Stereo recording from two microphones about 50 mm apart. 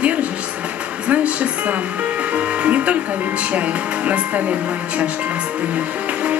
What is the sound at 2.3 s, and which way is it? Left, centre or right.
Music, right.